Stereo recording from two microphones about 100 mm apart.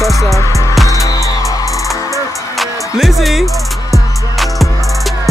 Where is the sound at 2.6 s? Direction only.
Centre (ahead or behind).